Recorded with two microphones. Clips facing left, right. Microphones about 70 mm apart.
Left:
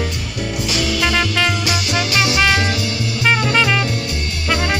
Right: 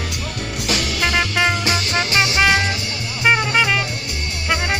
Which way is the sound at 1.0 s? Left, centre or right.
Centre.